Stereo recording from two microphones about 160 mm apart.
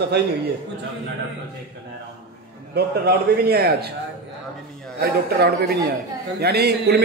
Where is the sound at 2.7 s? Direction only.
85° right.